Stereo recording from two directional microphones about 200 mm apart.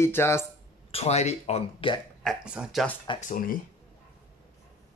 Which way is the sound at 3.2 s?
45° left (ahead or behind).